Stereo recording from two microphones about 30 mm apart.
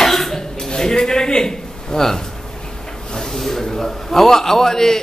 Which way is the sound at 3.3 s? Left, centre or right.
Centre.